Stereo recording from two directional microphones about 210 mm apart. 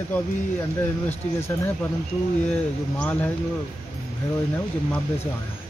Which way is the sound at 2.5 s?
5° left (ahead or behind).